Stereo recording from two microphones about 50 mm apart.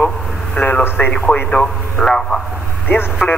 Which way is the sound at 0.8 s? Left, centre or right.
Left.